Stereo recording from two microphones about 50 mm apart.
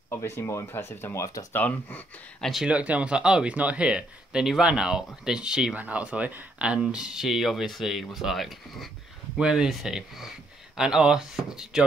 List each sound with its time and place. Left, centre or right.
0.1 s speech: left
0.7 s speech: left
1.5 s speech: left
2.7 s speech: right
5.8 s speech: right; by 8.9 s centre
9.4 s speech: centre
10.8 s speech: centre